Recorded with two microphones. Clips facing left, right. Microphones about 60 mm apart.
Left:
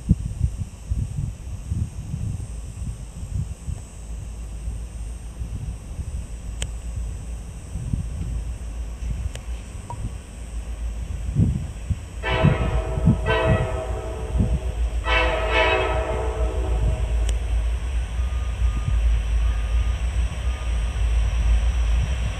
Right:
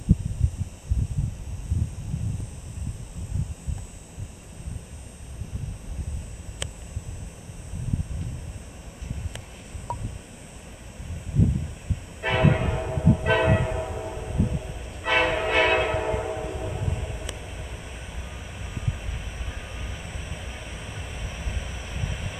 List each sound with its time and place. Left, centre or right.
12.2 s train horn: centre
17.4 s vehicle: centre